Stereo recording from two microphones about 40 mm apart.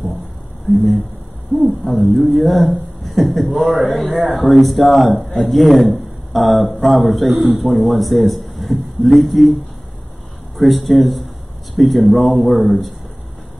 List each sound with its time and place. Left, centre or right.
0.7 s speech: centre
10.7 s speech: centre